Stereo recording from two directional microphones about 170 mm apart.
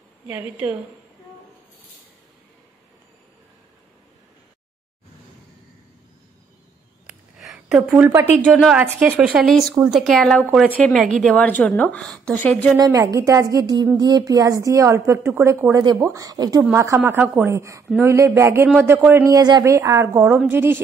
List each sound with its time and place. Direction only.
0.3 s speech: 10° right (ahead or behind)
7.1 s a sound: 5° right (ahead or behind)
8.5 s a woman's voice: 5° right (ahead or behind)
12.7 s a woman's voice: 20° right (ahead or behind)